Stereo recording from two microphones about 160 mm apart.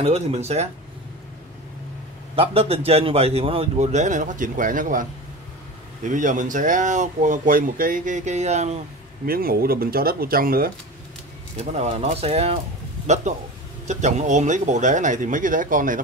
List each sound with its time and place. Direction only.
0.0 s a man's voice: 40° right (ahead or behind)
2.3 s a man's voice: 40° right (ahead or behind); by 5.0 s 55° right (ahead or behind)
6.0 s speech: 55° right (ahead or behind)
9.2 s speech: 65° right (ahead or behind)
11.5 s a man's voice: 45° right (ahead or behind)